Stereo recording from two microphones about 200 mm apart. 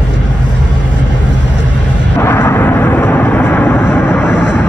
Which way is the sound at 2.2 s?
10° left (ahead or behind).